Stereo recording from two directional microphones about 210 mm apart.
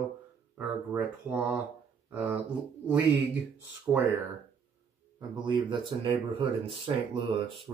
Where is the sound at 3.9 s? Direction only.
10° right (ahead or behind).